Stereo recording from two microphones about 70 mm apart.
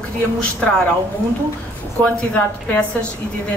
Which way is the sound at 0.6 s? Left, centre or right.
Centre.